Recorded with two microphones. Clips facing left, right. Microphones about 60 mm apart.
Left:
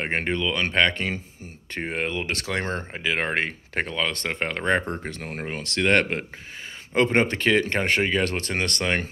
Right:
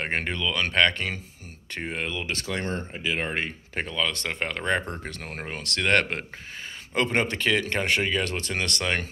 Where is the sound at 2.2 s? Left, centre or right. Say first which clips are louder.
Left 3 dB; left.